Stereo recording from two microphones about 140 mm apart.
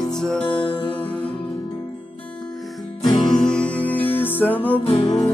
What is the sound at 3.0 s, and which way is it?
Music, 30° left (ahead or behind).